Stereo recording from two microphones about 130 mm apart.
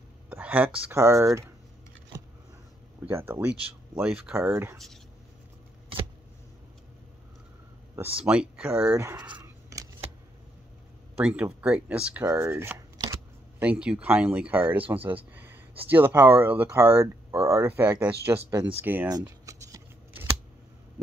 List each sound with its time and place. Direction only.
0.3 s speech: 15° right (ahead or behind)
0.9 s speech: 20° right (ahead or behind)
3.1 s speech: 15° right (ahead or behind)
8.2 s speech: 10° right (ahead or behind)
8.9 s speech: 20° right (ahead or behind)
9.3 s dog: 25° right (ahead or behind)
11.1 s speech: 10° right (ahead or behind)
12.3 s chopping: 20° right (ahead or behind)
13.6 s speech: 10° right (ahead or behind)
15.3 s a sound: 15° right (ahead or behind)
15.9 s speech: 15° right (ahead or behind)
19.0 s a sound: 30° right (ahead or behind)